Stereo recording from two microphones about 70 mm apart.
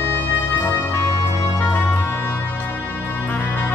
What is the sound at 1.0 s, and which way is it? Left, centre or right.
Music, left.